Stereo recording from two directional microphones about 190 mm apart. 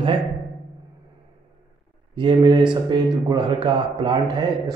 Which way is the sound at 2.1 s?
25° right (ahead or behind).